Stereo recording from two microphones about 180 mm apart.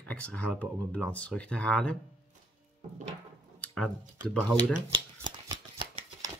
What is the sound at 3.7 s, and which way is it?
Speech, 5° left (ahead or behind).